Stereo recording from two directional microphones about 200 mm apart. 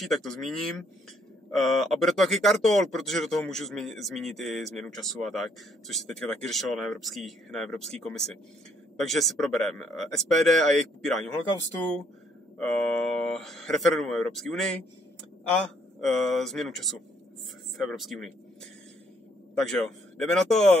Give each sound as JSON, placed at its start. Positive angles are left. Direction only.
{"t": 0.0, "sound": "speech", "side_deg": 0}
{"t": 19.6, "sound": "speech", "side_deg": 0}